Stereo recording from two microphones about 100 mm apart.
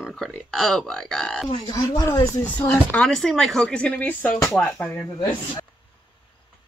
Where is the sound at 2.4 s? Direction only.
15° left (ahead or behind).